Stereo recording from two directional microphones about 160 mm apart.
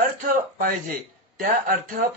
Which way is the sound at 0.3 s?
65° right (ahead or behind).